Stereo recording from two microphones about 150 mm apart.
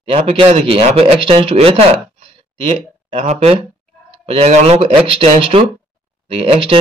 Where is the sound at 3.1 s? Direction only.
45° right (ahead or behind).